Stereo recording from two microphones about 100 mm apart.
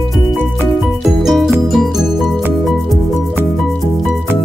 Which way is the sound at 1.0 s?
Centre (ahead or behind).